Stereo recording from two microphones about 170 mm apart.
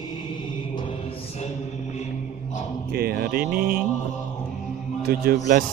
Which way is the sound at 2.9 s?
70° right (ahead or behind).